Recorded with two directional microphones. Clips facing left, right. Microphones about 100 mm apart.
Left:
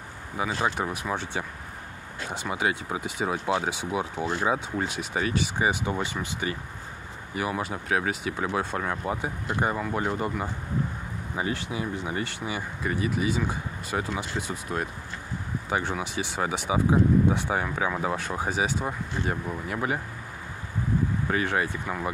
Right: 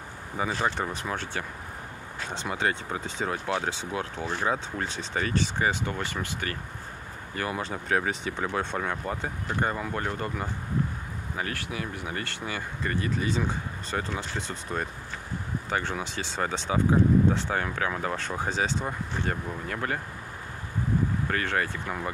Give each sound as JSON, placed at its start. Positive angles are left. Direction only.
{"t": 0.4, "sound": "speech", "side_deg": 10}
{"t": 1.1, "sound": "speech", "side_deg": 15}
{"t": 2.5, "sound": "speech", "side_deg": 10}
{"t": 10.0, "sound": "speech", "side_deg": 15}
{"t": 11.3, "sound": "speech", "side_deg": 20}
{"t": 21.3, "sound": "speech", "side_deg": 10}